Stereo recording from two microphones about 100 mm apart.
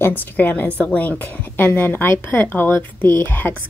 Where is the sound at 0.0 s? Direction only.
20° left (ahead or behind).